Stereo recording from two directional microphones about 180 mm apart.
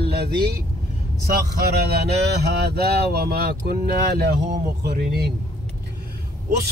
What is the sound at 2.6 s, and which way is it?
Speech, 60° right (ahead or behind).